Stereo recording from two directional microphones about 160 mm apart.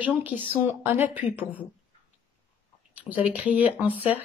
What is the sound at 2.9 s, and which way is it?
Speech, 10° right (ahead or behind).